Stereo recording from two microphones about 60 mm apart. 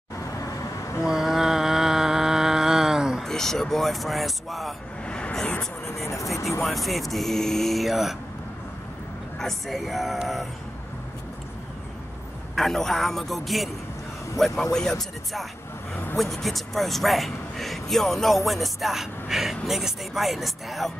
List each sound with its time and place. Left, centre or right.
1.0 s a sound: centre
3.3 s speech: centre
5.0 s a sound: centre
6.0 s speech: left
6.6 s speech: centre
9.4 s speech: centre
12.5 s speech: centre